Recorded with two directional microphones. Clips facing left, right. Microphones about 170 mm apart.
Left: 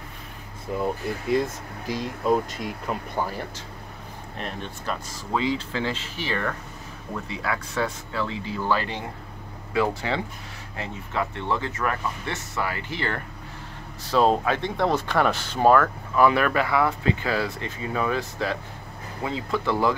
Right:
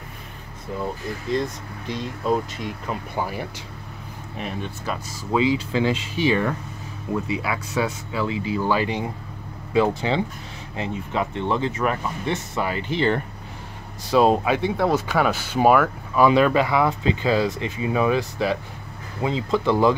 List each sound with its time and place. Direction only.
1.3 s speech: 5° left (ahead or behind)
3.3 s speech: 10° right (ahead or behind)